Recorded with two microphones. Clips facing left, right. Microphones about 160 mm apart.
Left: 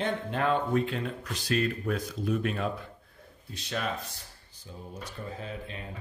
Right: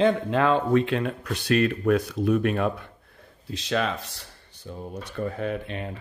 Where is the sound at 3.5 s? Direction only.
90° right; by 5.9 s 70° right (ahead or behind).